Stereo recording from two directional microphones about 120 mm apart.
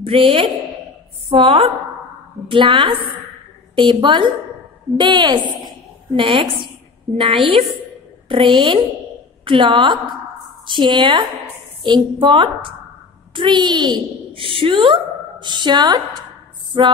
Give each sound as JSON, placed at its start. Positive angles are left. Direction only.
{"t": 0.0, "sound": "a woman's voice", "side_deg": -50}